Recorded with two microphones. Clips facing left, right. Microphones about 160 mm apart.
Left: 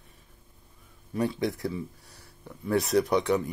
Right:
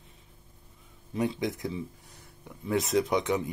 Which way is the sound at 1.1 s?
20° right (ahead or behind).